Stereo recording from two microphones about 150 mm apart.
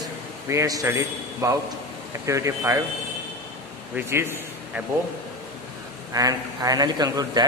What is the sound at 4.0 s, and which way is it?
Speech, 15° right (ahead or behind).